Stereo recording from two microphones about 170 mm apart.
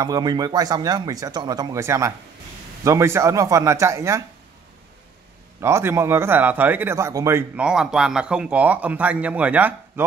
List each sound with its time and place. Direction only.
0.0 s speech: 25° right (ahead or behind)
5.6 s speech: 15° right (ahead or behind)
7.5 s speech: 5° right (ahead or behind)